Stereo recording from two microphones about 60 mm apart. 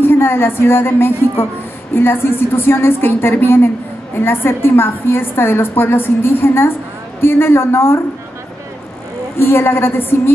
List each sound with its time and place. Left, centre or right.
0.0 s a woman's voice: left
9.4 s a woman's voice: left